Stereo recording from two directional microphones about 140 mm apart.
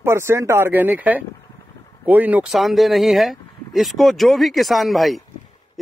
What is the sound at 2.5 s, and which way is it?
Speech, centre (ahead or behind).